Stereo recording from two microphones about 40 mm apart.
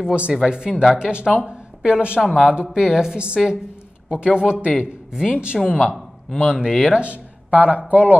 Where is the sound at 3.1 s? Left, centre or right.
Right; by 7.0 s centre.